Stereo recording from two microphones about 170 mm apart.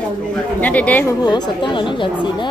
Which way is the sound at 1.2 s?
25° left (ahead or behind).